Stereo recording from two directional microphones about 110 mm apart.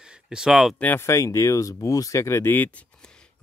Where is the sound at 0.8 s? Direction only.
20° left (ahead or behind).